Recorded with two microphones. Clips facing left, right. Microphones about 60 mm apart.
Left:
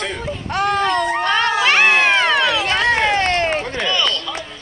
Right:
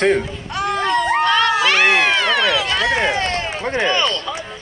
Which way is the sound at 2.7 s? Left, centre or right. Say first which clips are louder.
Left 2 dB; left.